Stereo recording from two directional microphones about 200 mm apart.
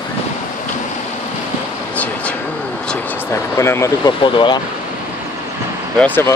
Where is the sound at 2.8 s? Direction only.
5° left (ahead or behind); by 4.6 s 25° left (ahead or behind).